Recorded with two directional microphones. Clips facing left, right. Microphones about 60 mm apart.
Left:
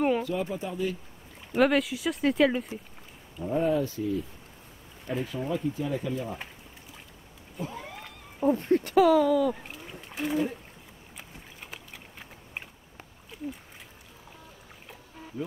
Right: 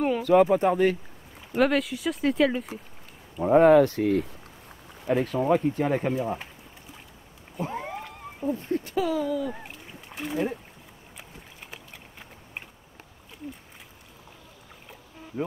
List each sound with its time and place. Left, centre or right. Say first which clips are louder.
0.2 s speech: right 12 dB; right
1.5 s speech: even; centre
3.3 s speech: right 10 dB; right
7.6 s a sound: right 6 dB; right
8.4 s speech: left 4 dB; left
10.0 s speech: left 2 dB; centre
11.1 s a sound: even; centre